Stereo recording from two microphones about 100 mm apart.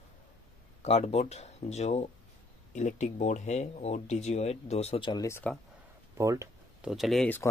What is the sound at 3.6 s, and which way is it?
Speech, 90° left.